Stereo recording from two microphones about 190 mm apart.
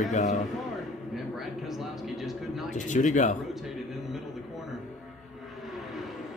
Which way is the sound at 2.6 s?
40° left (ahead or behind).